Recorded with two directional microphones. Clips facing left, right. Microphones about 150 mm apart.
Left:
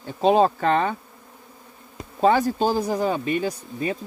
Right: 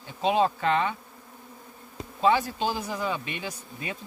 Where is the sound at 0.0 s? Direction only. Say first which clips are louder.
Left 6 dB; 40° left (ahead or behind).